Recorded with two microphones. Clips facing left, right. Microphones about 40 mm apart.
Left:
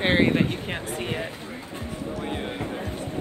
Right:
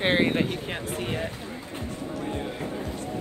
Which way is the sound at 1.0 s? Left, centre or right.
Centre.